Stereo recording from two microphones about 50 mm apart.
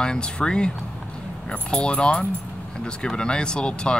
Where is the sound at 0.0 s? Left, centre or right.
Centre.